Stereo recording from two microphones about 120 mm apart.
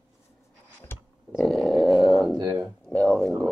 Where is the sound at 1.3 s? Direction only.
Centre (ahead or behind).